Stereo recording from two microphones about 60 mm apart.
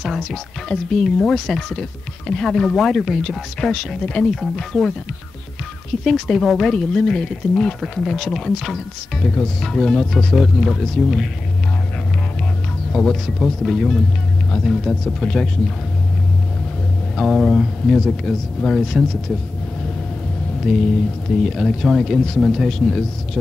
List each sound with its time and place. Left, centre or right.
0.0 s speech: centre
6.0 s speech: centre
12.9 s speech: centre
17.2 s speech: centre
20.7 s speech: centre